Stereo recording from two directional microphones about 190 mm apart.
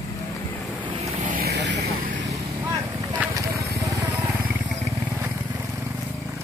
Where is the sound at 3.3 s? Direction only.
15° right (ahead or behind).